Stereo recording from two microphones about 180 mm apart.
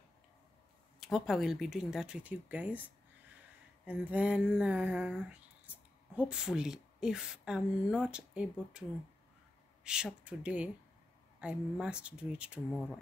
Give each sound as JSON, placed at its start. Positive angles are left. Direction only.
{"t": 0.9, "sound": "a woman's voice", "side_deg": 0}
{"t": 9.8, "sound": "speech", "side_deg": -5}